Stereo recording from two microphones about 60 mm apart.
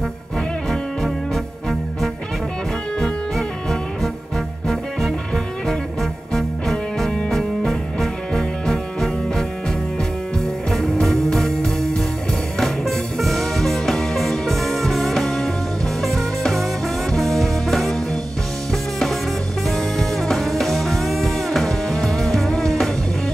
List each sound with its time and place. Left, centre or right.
0.7 s music: centre